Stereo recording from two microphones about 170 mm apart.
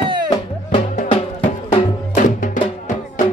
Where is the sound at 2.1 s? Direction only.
50° left (ahead or behind).